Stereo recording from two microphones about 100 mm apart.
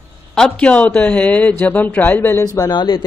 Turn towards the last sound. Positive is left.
turn(degrees=45)  # may be behind; listen again after turning